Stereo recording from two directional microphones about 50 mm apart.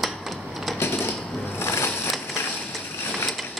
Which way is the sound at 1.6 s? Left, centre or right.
Left.